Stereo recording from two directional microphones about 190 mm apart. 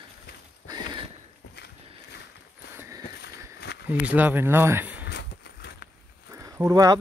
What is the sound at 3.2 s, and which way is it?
Walk, 60° left (ahead or behind).